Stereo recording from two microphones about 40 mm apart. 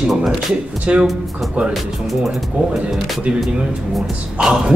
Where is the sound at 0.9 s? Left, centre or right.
Right.